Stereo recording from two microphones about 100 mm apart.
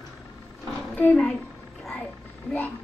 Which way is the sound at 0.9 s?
15° left (ahead or behind).